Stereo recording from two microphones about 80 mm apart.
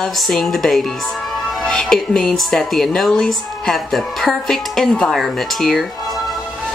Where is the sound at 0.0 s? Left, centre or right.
Centre.